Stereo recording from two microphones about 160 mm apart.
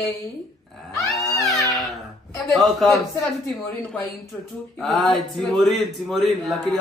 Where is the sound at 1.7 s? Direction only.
Centre (ahead or behind).